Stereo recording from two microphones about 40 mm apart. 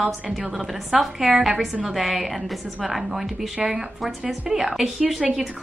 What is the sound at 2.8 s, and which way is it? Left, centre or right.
A woman's voice, centre.